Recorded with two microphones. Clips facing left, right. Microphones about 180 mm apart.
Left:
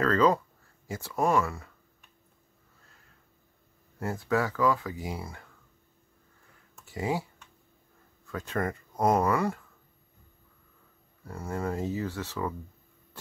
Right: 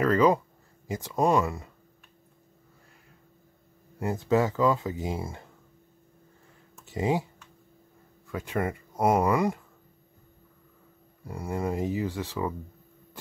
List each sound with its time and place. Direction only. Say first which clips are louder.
0.0 s speech: right 2 dB; 15° right (ahead or behind)
4.0 s speech: right 4 dB; 20° right (ahead or behind)
6.8 s speech: right 4 dB; 20° right (ahead or behind)
8.3 s speech: right 2 dB; 10° right (ahead or behind)
11.2 s speech: right 2 dB; 15° right (ahead or behind)